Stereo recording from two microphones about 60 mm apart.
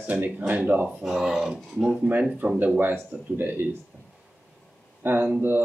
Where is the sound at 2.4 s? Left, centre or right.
Right.